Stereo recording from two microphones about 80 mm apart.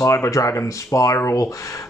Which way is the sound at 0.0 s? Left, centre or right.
Left.